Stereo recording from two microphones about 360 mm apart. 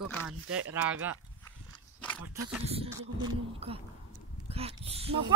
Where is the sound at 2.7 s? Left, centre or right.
Centre.